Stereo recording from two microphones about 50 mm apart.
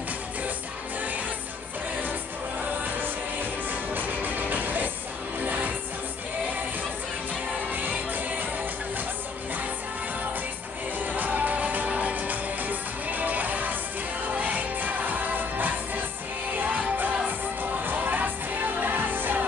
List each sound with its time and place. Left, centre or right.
3.9 s music: right
7.7 s music: right
11.0 s music: right